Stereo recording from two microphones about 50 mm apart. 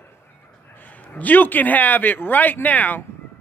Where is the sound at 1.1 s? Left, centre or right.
Left.